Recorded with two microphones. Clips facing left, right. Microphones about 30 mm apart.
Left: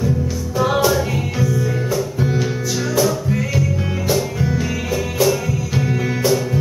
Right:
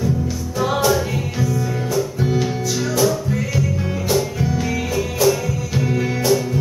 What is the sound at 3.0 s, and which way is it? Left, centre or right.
Music, centre.